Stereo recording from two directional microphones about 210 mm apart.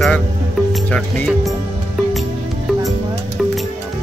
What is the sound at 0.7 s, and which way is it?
Speech, 5° left (ahead or behind).